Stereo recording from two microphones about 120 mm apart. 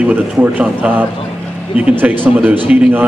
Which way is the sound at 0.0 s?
15° right (ahead or behind).